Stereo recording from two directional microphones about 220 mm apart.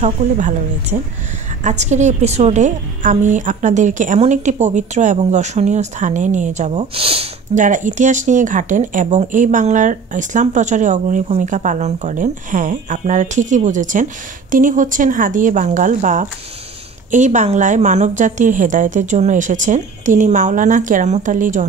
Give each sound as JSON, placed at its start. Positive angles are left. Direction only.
{"t": 0.0, "sound": "speech", "side_deg": -35}